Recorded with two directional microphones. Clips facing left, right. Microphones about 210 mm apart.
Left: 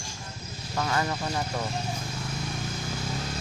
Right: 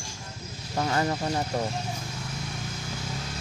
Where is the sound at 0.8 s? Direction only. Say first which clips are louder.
Right 2 dB; 30° right (ahead or behind).